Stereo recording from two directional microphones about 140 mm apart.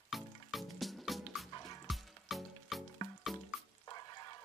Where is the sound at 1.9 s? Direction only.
Centre (ahead or behind).